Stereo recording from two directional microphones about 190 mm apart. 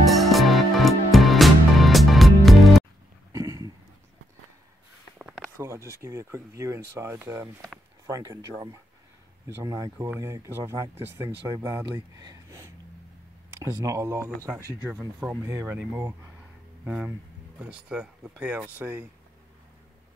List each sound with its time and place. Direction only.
0.0 s music: centre (ahead or behind)
3.3 s a sound: 20° right (ahead or behind)
5.6 s speech: 15° right (ahead or behind)